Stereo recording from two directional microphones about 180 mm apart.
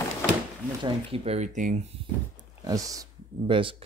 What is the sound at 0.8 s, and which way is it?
Speech, 35° right (ahead or behind).